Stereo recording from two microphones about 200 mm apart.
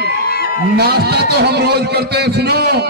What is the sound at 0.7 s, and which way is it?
A man's voice, 55° right (ahead or behind).